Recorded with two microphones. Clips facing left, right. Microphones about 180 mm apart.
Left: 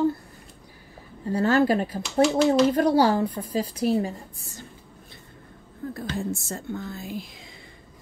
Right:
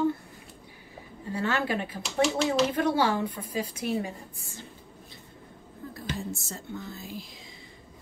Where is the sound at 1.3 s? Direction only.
40° left (ahead or behind).